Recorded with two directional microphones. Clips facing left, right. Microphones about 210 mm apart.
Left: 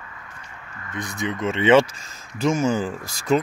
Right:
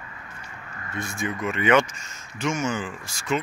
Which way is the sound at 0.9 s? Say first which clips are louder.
Left 2 dB; 20° left (ahead or behind).